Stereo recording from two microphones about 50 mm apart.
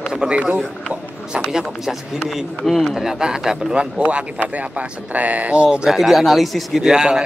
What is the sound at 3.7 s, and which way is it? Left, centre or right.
Speech, right.